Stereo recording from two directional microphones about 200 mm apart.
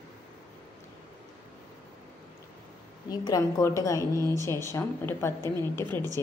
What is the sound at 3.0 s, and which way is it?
A woman's voice, 20° left (ahead or behind).